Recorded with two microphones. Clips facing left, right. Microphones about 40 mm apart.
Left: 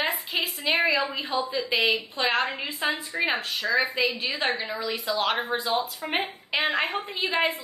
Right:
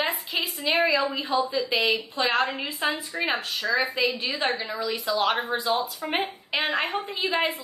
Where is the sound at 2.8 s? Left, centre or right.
Centre.